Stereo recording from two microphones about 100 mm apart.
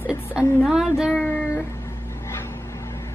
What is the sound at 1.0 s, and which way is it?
Child singing, centre (ahead or behind).